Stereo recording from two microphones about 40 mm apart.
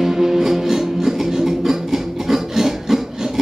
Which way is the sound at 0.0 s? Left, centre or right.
Centre.